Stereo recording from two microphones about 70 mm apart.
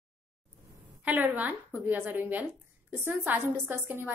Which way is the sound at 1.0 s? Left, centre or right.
Right.